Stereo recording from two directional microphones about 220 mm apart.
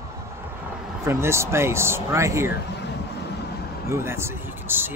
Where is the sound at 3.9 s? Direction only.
10° right (ahead or behind).